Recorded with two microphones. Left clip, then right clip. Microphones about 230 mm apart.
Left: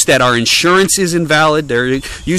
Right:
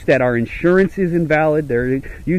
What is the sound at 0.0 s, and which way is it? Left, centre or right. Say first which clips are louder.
Speech: left 5 dB; left.